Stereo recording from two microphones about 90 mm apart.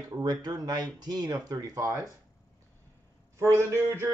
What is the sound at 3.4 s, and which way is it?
Speech, 35° right (ahead or behind).